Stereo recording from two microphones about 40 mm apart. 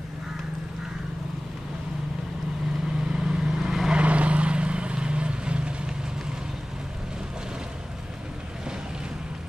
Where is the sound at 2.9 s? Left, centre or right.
Centre.